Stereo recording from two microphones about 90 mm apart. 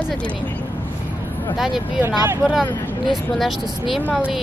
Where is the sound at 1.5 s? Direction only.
5° right (ahead or behind).